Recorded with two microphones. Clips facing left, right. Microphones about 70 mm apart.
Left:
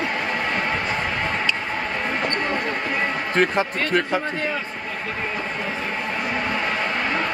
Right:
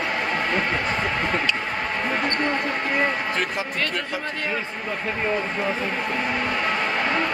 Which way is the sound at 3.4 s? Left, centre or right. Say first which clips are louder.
Left 5 dB; left.